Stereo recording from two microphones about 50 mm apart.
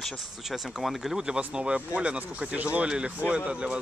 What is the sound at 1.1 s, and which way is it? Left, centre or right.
Speech, centre.